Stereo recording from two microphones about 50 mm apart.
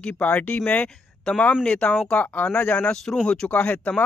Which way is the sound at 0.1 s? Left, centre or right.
Left.